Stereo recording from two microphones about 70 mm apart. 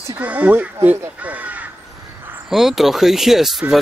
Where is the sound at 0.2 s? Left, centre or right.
Right.